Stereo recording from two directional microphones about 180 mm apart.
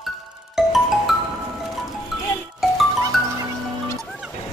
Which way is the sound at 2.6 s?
Centre (ahead or behind).